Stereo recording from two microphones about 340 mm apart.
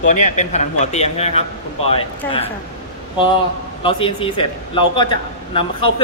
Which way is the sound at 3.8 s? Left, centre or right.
Centre.